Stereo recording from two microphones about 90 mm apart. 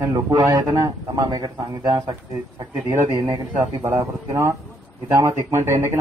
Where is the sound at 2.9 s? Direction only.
30° right (ahead or behind).